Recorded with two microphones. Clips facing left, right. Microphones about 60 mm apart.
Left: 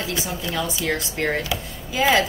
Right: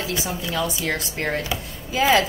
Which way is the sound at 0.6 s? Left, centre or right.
Right.